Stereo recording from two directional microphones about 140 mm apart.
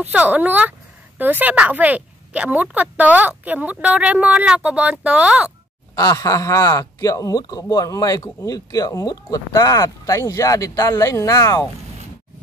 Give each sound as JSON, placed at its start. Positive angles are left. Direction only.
{"t": 0.0, "sound": "speech", "side_deg": -10}
{"t": 5.9, "sound": "speech", "side_deg": 25}